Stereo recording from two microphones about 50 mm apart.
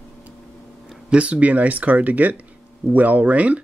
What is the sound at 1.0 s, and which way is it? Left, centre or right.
Speech, right.